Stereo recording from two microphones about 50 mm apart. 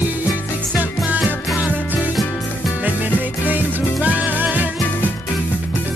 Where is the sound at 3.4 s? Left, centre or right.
Right.